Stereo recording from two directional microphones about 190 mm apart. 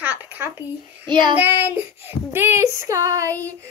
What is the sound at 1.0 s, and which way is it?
Child singing, 25° right (ahead or behind).